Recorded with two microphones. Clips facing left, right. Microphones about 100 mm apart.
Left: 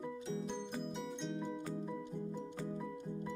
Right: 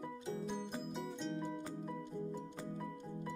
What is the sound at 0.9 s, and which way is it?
Music, centre (ahead or behind).